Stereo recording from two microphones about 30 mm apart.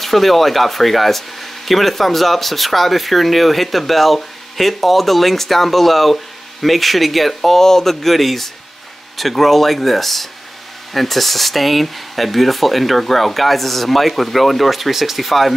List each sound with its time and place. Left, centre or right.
0.0 s speech: centre
7.6 s speech: centre
7.9 s speech: centre